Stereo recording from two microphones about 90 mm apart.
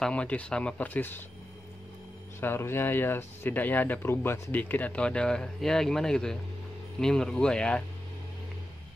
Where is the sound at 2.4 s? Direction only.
25° left (ahead or behind).